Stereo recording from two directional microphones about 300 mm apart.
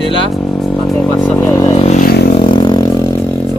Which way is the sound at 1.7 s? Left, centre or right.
Left.